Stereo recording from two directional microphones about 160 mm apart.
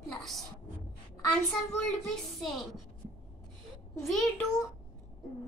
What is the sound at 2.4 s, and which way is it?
Speech, centre (ahead or behind).